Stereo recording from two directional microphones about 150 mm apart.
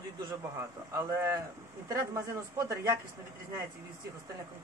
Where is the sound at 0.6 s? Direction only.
20° right (ahead or behind).